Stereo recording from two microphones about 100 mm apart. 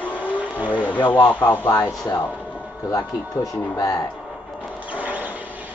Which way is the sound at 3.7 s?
40° left (ahead or behind).